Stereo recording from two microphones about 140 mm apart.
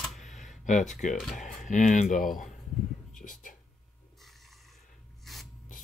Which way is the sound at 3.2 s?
70° left (ahead or behind).